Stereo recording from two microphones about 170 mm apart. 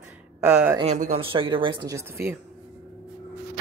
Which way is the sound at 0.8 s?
40° right (ahead or behind).